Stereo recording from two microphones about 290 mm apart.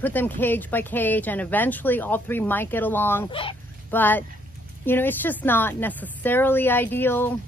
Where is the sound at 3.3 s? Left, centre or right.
Centre.